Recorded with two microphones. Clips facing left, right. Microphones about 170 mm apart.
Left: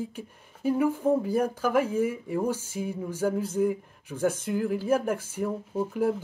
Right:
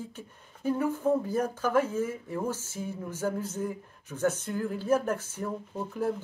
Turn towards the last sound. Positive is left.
turn(degrees=10)  # may be behind; listen again after turning